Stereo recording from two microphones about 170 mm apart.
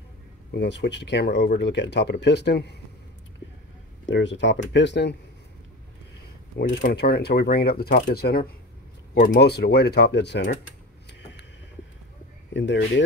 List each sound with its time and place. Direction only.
0.5 s speech: 85° left
4.0 s speech: 90° left
6.8 s speech: 65° left (ahead or behind); by 10.6 s 90° left
12.5 s speech: 90° left